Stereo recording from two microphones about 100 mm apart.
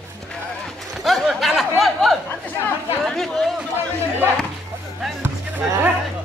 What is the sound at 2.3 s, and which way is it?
Chatter, 20° left (ahead or behind).